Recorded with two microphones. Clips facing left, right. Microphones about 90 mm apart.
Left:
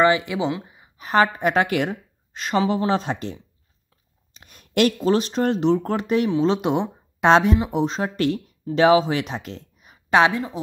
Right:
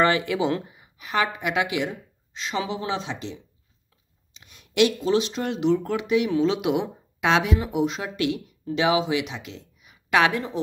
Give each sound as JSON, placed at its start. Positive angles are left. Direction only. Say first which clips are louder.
{"t": 0.0, "sound": "speech", "louder": "left 2 dB", "side_deg": 20}
{"t": 1.0, "sound": "a woman's voice", "louder": "left 6 dB", "side_deg": 40}